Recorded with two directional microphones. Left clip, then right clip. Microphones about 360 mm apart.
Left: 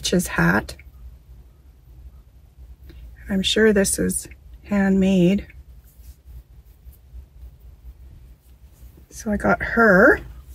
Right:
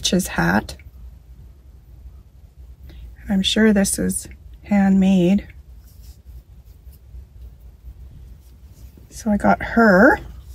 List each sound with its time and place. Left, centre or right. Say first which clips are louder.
0.0 s speech: even; centre
2.9 s speech: right 2 dB; centre
9.1 s speech: right 3 dB; centre